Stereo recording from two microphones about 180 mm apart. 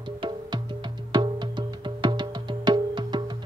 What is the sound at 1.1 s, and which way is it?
Music, 25° right (ahead or behind).